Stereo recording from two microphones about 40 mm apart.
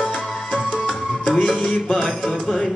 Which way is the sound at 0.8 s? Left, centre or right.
Centre.